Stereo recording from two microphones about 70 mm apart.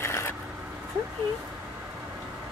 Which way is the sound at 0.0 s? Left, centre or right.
Left.